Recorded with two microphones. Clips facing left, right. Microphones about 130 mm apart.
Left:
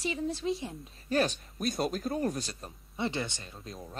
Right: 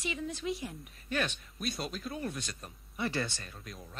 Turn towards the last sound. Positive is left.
turn(degrees=25)  # may be behind; listen again after turning